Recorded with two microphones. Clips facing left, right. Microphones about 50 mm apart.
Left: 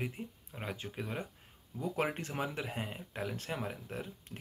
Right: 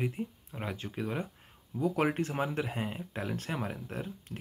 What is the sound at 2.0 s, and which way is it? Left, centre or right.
Speech, centre.